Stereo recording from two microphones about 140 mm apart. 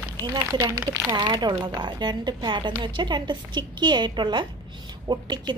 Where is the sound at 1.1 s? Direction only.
30° right (ahead or behind).